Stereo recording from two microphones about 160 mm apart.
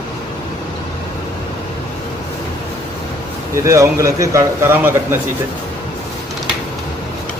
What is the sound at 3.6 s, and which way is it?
Speech, 20° right (ahead or behind).